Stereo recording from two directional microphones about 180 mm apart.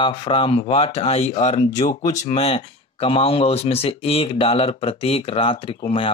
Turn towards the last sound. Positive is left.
turn(degrees=30)  # may be behind; listen again after turning